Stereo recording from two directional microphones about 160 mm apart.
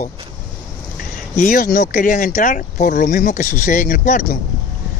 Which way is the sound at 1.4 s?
55° left (ahead or behind).